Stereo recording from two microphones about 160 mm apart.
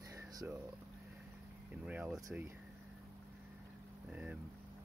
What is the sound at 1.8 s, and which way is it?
Speech, 10° right (ahead or behind).